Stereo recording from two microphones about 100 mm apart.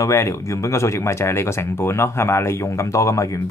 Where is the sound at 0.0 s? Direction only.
30° left (ahead or behind).